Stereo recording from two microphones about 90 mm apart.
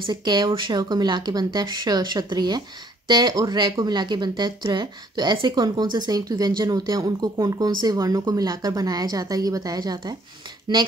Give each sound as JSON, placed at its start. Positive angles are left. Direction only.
{"t": 0.0, "sound": "a woman's voice", "side_deg": -60}